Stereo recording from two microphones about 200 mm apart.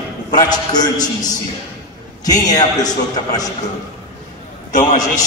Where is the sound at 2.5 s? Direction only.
20° left (ahead or behind).